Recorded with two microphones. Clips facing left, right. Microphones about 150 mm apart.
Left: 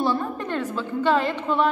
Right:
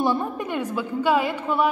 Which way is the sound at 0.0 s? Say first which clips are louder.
Right 1 dB; 15° right (ahead or behind).